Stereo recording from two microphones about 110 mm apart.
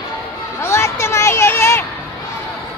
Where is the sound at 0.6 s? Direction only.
25° left (ahead or behind).